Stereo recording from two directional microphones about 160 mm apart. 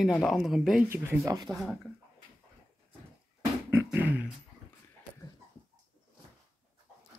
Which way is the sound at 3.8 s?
10° right (ahead or behind).